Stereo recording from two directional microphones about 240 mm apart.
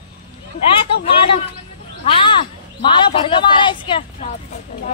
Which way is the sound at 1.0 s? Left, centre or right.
Left.